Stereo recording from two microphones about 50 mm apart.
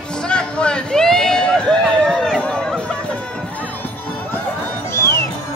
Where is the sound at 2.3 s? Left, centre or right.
Centre.